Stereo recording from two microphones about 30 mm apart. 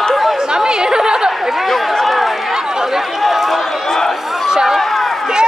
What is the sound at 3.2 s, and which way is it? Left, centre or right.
Run, centre.